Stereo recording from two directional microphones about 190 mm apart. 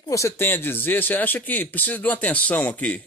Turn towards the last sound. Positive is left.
turn(degrees=10)  # may be behind; listen again after turning